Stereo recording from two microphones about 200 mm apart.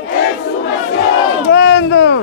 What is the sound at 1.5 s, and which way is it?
Speech, 60° left (ahead or behind).